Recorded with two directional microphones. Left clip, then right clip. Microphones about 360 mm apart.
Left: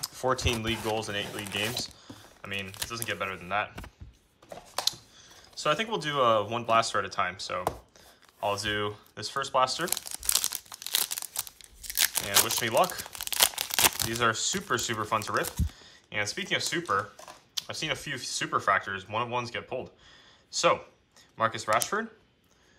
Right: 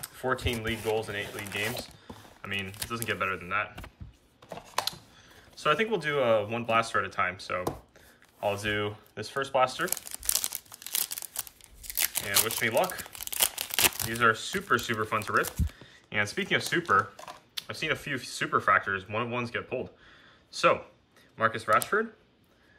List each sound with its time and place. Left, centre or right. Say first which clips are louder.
0.0 s speech: left 2 dB; centre
8.4 s crumpling: even; centre
11.9 s speech: left 3 dB; centre